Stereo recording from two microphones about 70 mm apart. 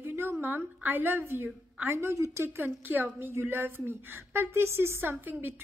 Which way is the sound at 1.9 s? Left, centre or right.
Right.